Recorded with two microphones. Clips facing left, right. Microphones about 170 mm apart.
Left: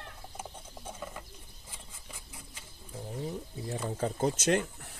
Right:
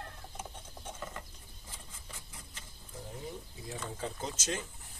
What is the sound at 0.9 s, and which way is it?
Bird, 10° left (ahead or behind).